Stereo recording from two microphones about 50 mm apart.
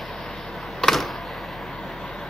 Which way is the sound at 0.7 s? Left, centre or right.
Centre.